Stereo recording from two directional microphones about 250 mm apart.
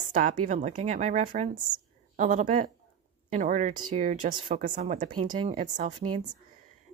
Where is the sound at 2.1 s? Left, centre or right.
Right.